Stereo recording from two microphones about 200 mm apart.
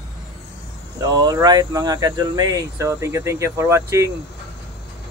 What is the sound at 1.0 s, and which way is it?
Speech, 20° right (ahead or behind).